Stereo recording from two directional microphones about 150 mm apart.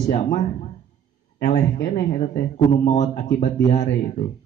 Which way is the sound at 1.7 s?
65° left (ahead or behind).